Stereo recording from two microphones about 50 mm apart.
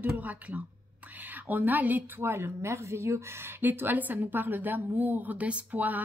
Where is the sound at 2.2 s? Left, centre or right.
Right.